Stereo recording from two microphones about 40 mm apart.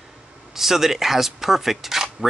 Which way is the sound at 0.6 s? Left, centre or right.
Centre.